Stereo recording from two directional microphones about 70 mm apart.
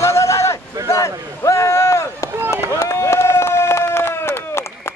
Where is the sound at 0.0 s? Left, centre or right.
Left.